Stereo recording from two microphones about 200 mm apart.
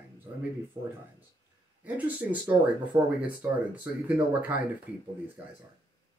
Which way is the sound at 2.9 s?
25° right (ahead or behind).